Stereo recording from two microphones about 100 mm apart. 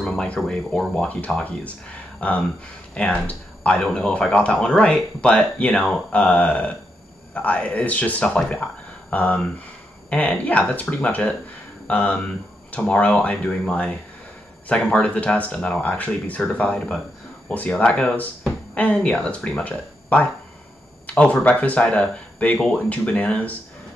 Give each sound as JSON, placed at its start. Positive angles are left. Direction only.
{"t": 0.0, "sound": "speech", "side_deg": 5}